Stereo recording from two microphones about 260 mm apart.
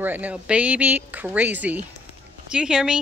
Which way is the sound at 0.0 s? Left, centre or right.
Centre.